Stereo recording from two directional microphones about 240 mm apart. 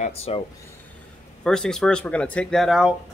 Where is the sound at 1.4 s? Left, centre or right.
Centre.